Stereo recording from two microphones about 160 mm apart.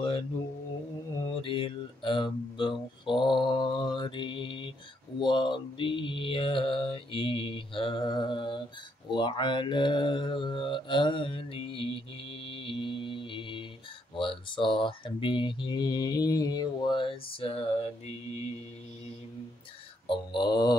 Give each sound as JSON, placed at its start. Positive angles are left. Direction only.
{"t": 1.4, "sound": "speech", "side_deg": 30}
{"t": 9.1, "sound": "mantra", "side_deg": 30}
{"t": 14.1, "sound": "speech", "side_deg": 35}
{"t": 20.1, "sound": "mantra", "side_deg": 30}